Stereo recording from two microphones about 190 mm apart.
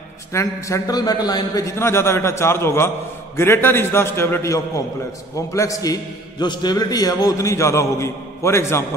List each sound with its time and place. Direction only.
0.3 s a man's voice: 15° left (ahead or behind)